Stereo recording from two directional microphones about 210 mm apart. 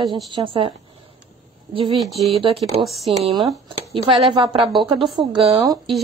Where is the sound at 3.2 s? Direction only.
25° right (ahead or behind).